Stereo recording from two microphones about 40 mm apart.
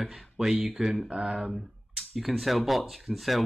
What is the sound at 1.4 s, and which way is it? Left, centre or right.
Speech, centre.